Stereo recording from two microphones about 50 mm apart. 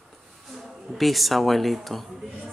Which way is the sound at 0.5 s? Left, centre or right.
Centre.